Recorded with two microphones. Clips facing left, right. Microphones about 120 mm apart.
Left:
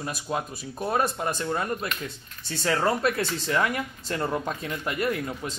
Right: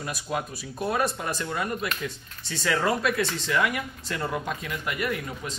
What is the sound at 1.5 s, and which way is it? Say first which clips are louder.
Speech: left 1 dB; 30° left (ahead or behind).